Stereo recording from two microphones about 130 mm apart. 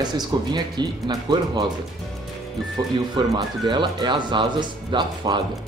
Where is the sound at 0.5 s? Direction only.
35° right (ahead or behind).